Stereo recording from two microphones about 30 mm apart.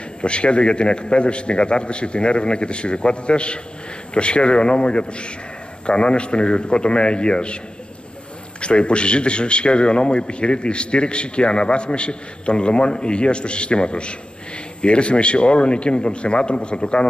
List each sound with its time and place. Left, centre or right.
0.2 s a man's voice: left